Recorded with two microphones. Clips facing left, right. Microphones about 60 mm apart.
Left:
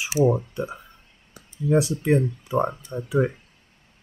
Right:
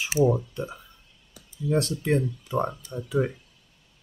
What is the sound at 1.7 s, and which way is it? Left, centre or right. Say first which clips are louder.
Speech: left 4 dB; left.